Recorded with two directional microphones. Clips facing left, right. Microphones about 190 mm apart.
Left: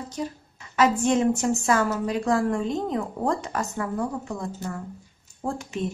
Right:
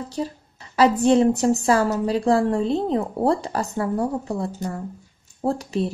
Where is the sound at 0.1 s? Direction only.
35° right (ahead or behind).